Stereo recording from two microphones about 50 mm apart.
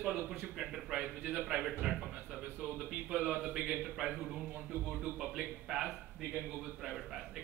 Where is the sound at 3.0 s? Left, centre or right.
Centre.